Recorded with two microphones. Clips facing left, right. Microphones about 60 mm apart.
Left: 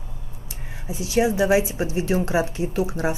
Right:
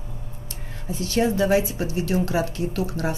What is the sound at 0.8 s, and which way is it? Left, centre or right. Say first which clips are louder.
A woman's voice: left 1 dB; centre.